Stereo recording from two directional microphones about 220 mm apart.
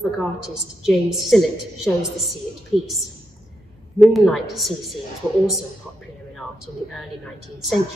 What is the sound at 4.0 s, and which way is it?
Speech, centre (ahead or behind).